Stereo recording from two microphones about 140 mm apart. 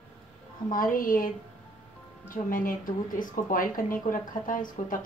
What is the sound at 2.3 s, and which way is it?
Speech, 80° left.